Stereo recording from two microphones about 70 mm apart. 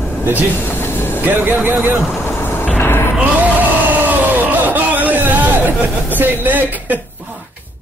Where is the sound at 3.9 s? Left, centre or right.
Right.